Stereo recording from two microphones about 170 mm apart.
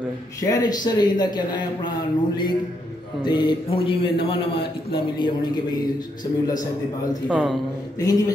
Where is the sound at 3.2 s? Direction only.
25° left (ahead or behind).